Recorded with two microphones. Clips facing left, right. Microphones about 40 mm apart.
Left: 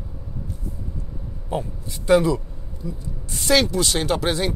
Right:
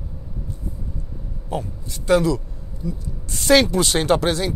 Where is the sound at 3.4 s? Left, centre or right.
Centre.